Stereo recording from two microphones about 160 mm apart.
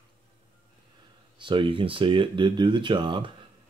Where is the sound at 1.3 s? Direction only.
30° right (ahead or behind).